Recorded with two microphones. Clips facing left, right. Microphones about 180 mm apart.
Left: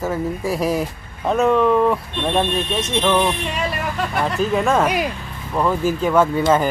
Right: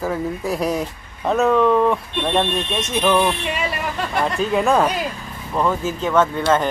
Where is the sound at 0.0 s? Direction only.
Centre (ahead or behind).